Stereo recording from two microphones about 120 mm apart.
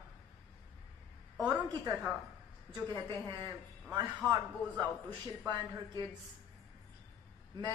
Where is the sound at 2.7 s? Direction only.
35° right (ahead or behind).